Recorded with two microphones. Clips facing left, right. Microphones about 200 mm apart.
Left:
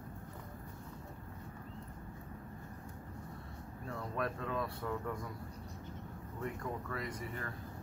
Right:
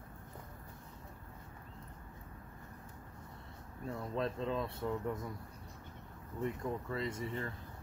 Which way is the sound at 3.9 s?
20° right (ahead or behind).